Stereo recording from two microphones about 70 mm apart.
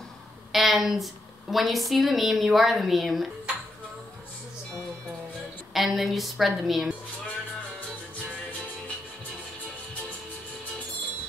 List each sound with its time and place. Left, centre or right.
0.5 s a woman's voice: centre
5.7 s a woman's voice: centre